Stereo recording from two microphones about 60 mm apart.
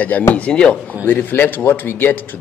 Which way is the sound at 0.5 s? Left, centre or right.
Centre.